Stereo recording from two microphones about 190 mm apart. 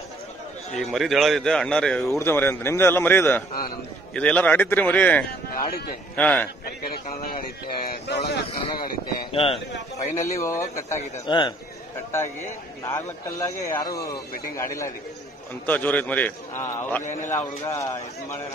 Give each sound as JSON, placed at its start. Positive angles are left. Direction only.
{"t": 0.7, "sound": "a man's voice", "side_deg": 0}
{"t": 5.5, "sound": "speech", "side_deg": 50}
{"t": 6.1, "sound": "speech", "side_deg": 10}
{"t": 6.6, "sound": "speech", "side_deg": 50}
{"t": 9.3, "sound": "a man's voice", "side_deg": 30}
{"t": 9.9, "sound": "a man's voice", "side_deg": 15}
{"t": 12.1, "sound": "speech", "side_deg": 15}
{"t": 15.6, "sound": "speech", "side_deg": 10}